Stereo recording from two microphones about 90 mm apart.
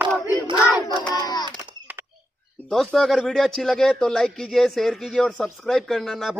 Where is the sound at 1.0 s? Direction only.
45° left (ahead or behind).